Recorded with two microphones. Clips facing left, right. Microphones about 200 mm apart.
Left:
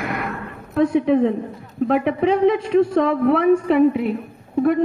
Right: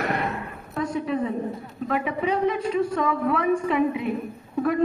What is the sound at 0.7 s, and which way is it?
A woman's voice, 60° left (ahead or behind).